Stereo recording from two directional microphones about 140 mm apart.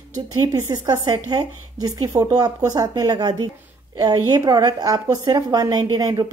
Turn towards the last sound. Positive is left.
turn(degrees=-30)  # may be behind; listen again after turning